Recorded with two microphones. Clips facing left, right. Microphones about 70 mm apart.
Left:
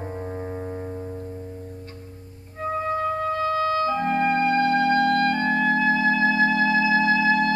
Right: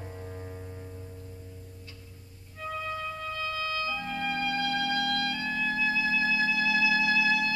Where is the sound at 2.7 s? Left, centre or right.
Left.